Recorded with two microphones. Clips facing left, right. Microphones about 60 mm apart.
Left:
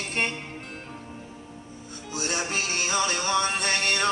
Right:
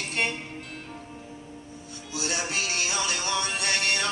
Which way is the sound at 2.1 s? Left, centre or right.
Left.